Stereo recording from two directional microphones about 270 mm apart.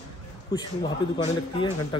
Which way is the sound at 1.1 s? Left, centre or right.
Centre.